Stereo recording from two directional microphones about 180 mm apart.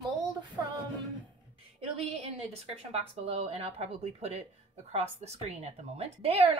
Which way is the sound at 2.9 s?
35° right (ahead or behind).